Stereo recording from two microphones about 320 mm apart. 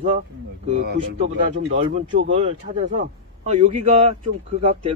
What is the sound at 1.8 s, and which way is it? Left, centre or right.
A man's voice, right.